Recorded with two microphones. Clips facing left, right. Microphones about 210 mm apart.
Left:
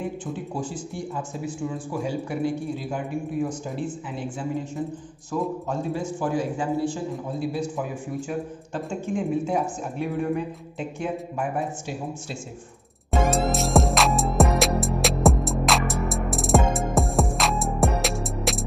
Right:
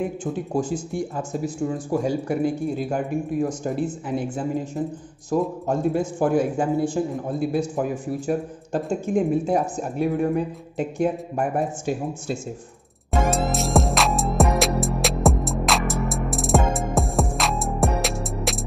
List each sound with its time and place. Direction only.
0.2 s speech: 45° right (ahead or behind)
5.3 s speech: 50° right (ahead or behind)
13.1 s music: centre (ahead or behind)